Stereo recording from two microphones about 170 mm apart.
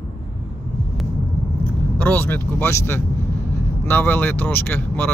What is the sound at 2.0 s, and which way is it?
Speech, 10° left (ahead or behind).